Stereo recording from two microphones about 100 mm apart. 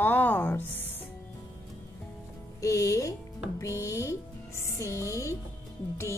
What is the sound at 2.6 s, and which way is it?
Speech, 30° left (ahead or behind).